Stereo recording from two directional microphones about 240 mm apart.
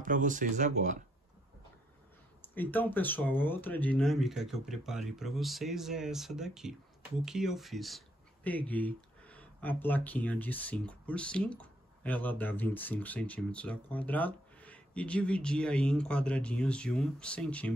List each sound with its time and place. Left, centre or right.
0.0 s speech: right
2.4 s speech: centre